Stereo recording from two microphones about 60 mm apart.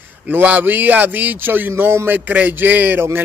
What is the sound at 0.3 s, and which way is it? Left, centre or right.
Speech, right.